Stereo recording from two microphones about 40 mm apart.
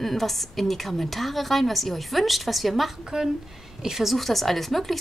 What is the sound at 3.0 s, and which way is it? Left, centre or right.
A woman's voice, centre.